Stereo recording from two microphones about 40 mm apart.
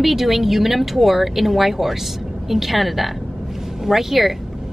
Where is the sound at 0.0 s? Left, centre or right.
Centre.